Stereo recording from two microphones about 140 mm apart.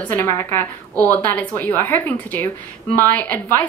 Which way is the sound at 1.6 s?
15° left (ahead or behind).